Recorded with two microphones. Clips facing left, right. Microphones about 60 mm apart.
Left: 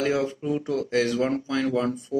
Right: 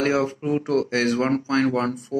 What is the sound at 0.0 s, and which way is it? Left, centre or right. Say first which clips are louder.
Speech: right 3 dB; right.